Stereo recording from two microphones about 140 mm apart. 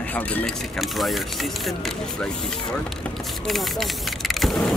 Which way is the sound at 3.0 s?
Centre (ahead or behind).